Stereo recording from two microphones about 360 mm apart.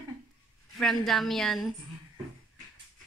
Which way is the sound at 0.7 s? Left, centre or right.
Centre.